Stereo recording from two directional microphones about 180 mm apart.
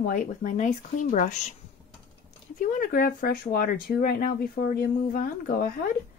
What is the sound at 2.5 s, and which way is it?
Speech, 50° left (ahead or behind).